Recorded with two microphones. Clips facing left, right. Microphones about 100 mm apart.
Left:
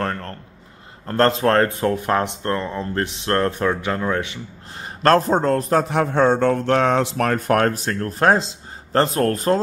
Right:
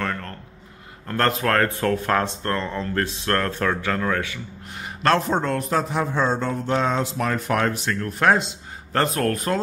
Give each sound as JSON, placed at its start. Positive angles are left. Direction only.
{"t": 0.0, "sound": "a sound", "side_deg": 35}
{"t": 1.0, "sound": "speech", "side_deg": 30}
{"t": 5.9, "sound": "speech", "side_deg": 60}